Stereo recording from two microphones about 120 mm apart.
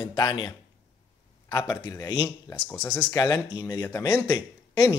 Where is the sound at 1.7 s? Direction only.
30° left (ahead or behind).